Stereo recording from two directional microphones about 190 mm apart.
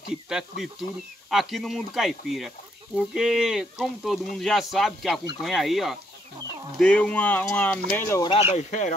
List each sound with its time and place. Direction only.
0.3 s a sound: centre (ahead or behind)
6.8 s speech: 5° left (ahead or behind)
8.3 s speech: 30° left (ahead or behind)